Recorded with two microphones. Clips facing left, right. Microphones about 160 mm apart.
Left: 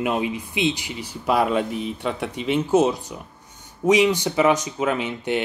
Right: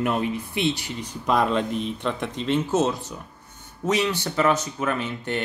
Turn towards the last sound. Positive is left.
turn(degrees=15)  # may be behind; listen again after turning